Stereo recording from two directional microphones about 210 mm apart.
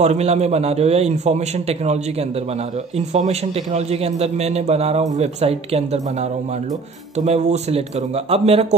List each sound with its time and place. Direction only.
0.0 s a man's voice: 30° right (ahead or behind)
3.1 s a man's voice: 30° right (ahead or behind)
7.2 s a man's voice: 30° right (ahead or behind)